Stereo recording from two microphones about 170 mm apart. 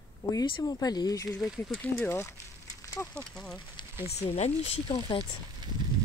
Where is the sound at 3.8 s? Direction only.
25° left (ahead or behind).